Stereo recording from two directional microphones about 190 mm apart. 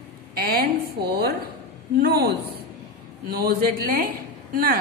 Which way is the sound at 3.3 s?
50° right (ahead or behind).